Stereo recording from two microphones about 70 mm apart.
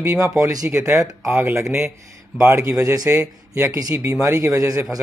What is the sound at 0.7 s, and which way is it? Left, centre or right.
Speech, right.